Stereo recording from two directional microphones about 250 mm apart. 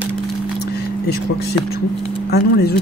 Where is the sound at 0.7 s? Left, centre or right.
Left.